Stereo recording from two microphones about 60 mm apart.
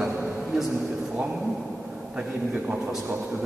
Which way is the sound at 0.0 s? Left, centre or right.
Centre.